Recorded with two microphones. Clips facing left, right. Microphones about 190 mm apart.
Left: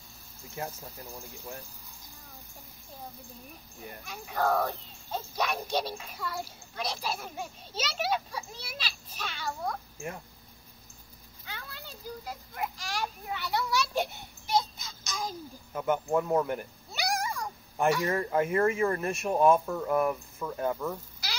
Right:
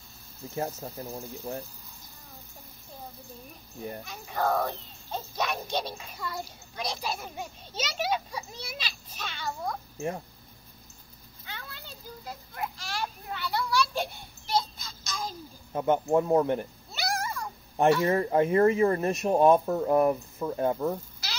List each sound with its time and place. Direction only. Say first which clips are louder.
0.6 s speech: right 6 dB; 35° right (ahead or behind)
4.1 s a child's voice: even; centre (ahead or behind)
9.9 s speech: right 6 dB; 30° right (ahead or behind)
12.3 s a child's voice: right 1 dB; 15° left (ahead or behind)
14.5 s a sound: even; 20° left (ahead or behind)
15.7 s speech: right 4 dB; 30° right (ahead or behind)
16.9 s cat: even; 15° left (ahead or behind)
18.0 s speech: right 4 dB; 25° right (ahead or behind)